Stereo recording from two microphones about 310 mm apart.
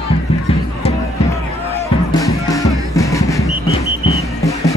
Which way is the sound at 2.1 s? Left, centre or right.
Centre.